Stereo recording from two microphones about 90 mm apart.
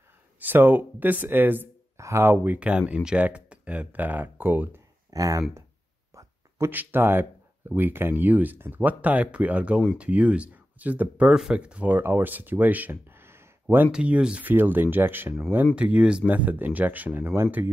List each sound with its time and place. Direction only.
0.4 s speech: 20° right (ahead or behind)
2.0 s speech: 30° right (ahead or behind)
5.1 s speech: 40° right (ahead or behind)
6.1 s a sound: 35° right (ahead or behind)
6.7 s speech: 20° right (ahead or behind)
13.9 s speech: 10° right (ahead or behind)